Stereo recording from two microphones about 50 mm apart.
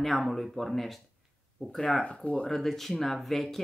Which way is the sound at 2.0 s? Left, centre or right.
Left.